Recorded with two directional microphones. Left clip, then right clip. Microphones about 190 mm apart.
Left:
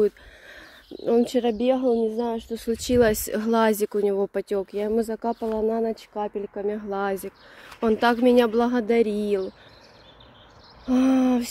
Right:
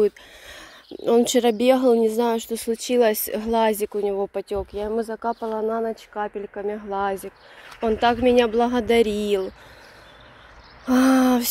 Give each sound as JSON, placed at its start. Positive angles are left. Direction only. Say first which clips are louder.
{"t": 0.0, "sound": "speech", "louder": "right 2 dB", "side_deg": 5}
{"t": 2.7, "sound": "speech", "louder": "right 1 dB", "side_deg": 20}
{"t": 10.9, "sound": "a sound", "louder": "right 3 dB", "side_deg": 0}